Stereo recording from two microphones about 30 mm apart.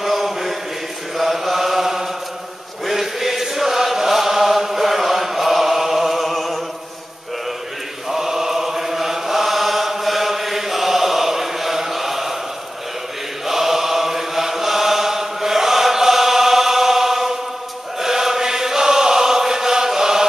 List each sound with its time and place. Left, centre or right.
0.0 s mantra: centre
2.9 s chant: centre
8.1 s chant: centre
13.5 s chant: centre